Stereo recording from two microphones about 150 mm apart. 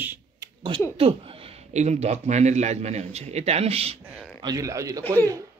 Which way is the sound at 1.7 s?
50° right (ahead or behind).